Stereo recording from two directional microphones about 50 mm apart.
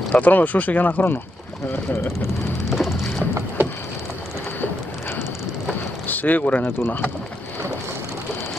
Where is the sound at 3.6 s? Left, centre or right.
Right.